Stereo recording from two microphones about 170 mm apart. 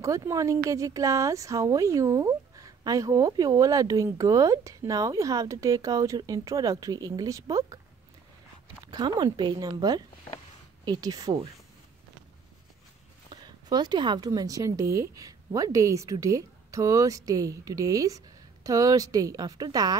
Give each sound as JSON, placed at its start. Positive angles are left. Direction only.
{"t": 0.0, "sound": "speech", "side_deg": -20}
{"t": 8.8, "sound": "speech", "side_deg": -25}
{"t": 13.3, "sound": "speech", "side_deg": -25}